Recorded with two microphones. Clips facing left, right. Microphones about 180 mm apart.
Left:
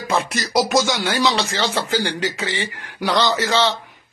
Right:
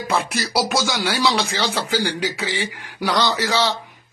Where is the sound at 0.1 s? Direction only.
10° right (ahead or behind).